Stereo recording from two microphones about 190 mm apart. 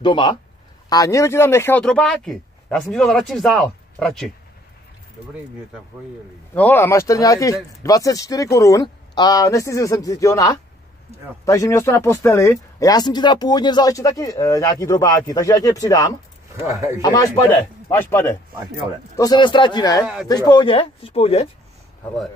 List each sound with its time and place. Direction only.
0.0 s speech: 25° left (ahead or behind); by 4.3 s centre (ahead or behind)
6.5 s speech: 10° left (ahead or behind)
16.5 s speech: 15° right (ahead or behind)
17.0 s speech: 20° left (ahead or behind)